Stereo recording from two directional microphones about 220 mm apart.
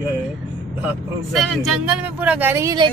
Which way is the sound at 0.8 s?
Centre (ahead or behind).